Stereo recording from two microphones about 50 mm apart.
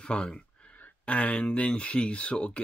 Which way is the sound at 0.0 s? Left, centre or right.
Centre.